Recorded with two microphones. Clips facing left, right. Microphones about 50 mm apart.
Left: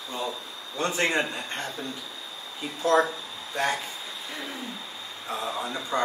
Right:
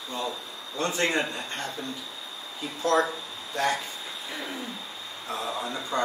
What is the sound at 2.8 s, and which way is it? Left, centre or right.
Speech, centre.